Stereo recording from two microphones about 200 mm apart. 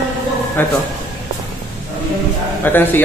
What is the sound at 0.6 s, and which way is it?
Speech, 10° left (ahead or behind).